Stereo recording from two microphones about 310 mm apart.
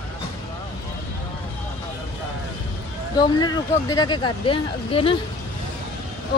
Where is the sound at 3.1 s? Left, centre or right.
Centre.